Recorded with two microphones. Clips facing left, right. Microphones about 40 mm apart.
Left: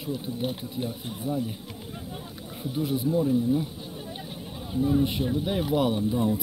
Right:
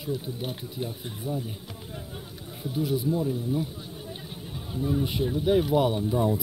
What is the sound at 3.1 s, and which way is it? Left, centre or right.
Speech, centre.